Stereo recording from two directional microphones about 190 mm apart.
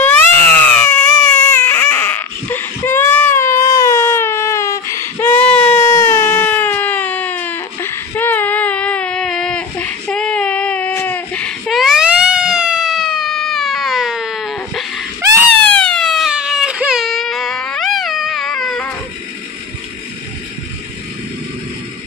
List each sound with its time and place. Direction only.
0.0 s cat: 10° left (ahead or behind)
1.5 s baby cry: 10° left (ahead or behind)
10.0 s a sound: 5° left (ahead or behind)
15.6 s baby cry: 5° left (ahead or behind)